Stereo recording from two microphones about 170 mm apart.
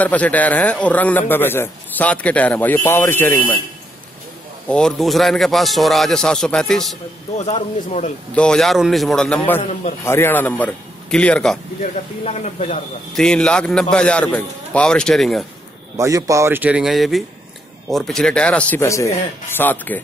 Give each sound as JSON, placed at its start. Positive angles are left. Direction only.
{"t": 0.0, "sound": "a man's voice", "side_deg": 10}
{"t": 4.6, "sound": "a man's voice", "side_deg": 5}
{"t": 7.3, "sound": "speech", "side_deg": 40}
{"t": 8.4, "sound": "a man's voice", "side_deg": 5}
{"t": 9.6, "sound": "speech", "side_deg": 40}
{"t": 10.0, "sound": "a man's voice", "side_deg": 15}
{"t": 11.8, "sound": "speech", "side_deg": 40}
{"t": 13.1, "sound": "a man's voice", "side_deg": 5}
{"t": 16.0, "sound": "a man's voice", "side_deg": -20}